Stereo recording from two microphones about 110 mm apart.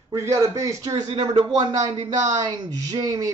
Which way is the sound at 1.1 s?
40° right (ahead or behind).